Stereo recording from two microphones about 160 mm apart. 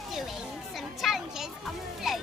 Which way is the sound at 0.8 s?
Centre (ahead or behind).